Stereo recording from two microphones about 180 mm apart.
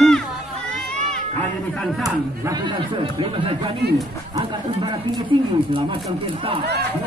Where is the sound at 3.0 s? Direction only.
30° right (ahead or behind).